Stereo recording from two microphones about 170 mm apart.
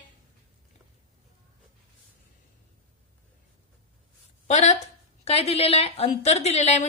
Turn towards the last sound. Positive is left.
turn(degrees=40)  # may be behind; listen again after turning